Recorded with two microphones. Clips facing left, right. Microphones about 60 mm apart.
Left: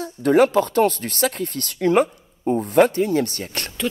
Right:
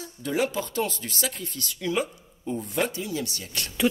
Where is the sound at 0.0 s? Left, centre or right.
Left.